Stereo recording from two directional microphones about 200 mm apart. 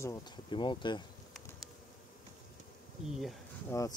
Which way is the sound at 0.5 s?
25° left (ahead or behind).